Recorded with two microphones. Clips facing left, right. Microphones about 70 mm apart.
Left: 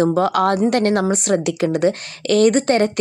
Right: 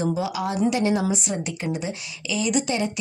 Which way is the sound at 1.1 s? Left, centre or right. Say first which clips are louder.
Left 9 dB; left.